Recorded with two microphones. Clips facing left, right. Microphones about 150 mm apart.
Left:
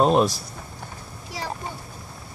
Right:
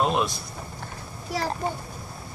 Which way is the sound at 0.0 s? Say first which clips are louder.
Left 6 dB; 40° left (ahead or behind).